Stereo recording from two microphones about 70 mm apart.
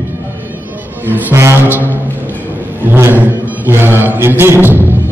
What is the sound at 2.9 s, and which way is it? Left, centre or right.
Music, right.